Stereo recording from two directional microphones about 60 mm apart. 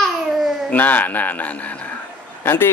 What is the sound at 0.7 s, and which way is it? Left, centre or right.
Speech, left.